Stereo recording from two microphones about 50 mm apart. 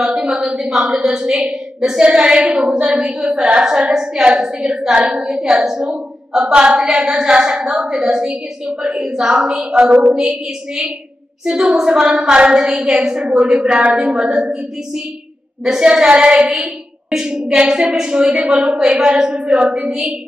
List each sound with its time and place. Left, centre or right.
0.0 s a sound: centre
0.6 s a woman's voice: centre
9.8 s a sound: right
11.4 s a woman's voice: centre
12.8 s a woman's voice: centre
13.1 s a woman's voice: centre
15.6 s a woman's voice: centre